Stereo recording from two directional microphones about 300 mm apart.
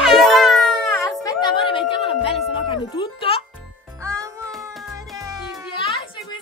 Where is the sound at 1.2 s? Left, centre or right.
Centre.